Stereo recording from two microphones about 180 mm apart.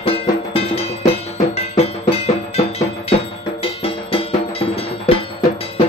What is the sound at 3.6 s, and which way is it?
Cowbell, 30° left (ahead or behind).